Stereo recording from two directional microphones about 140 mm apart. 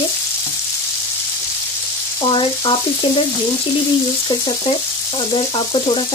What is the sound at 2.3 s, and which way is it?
Frying, 35° left (ahead or behind).